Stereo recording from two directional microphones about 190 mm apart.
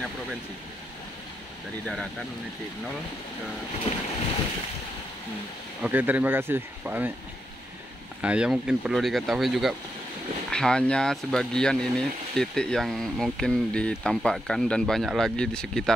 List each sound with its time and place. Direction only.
3.9 s boat: 30° left (ahead or behind)
5.8 s speech: 10° right (ahead or behind)
8.2 s speech: 5° right (ahead or behind)